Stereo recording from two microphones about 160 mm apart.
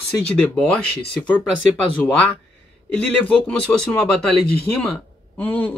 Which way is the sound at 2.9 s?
5° left (ahead or behind).